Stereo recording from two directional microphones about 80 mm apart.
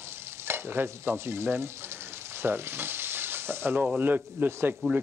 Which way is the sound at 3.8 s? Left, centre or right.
Centre.